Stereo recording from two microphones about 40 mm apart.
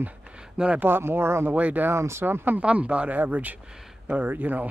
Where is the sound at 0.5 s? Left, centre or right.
Right.